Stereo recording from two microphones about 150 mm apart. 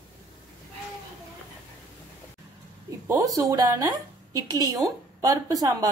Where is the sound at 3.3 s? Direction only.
25° right (ahead or behind).